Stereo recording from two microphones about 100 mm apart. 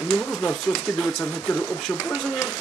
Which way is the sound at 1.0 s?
10° left (ahead or behind).